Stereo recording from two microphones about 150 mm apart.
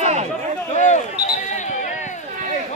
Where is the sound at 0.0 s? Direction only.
45° right (ahead or behind).